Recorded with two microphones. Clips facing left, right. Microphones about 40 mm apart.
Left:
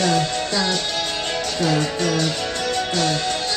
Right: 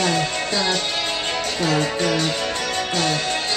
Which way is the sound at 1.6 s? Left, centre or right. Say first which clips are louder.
Right 1 dB; right.